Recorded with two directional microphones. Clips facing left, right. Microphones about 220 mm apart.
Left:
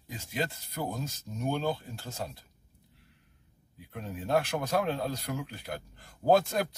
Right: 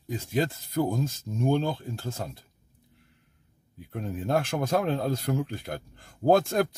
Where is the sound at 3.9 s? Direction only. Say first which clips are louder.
Right 2 dB; 50° right (ahead or behind).